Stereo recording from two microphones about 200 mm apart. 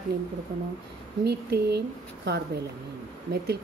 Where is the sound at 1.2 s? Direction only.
55° right (ahead or behind).